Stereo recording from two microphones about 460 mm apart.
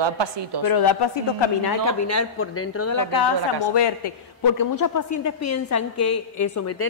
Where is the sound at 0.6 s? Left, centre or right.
Left.